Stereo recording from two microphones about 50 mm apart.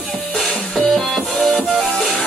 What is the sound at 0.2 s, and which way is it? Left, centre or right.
Music, centre.